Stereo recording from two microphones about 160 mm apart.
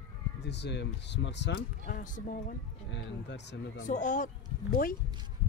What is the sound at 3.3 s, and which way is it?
Speech, 90° left.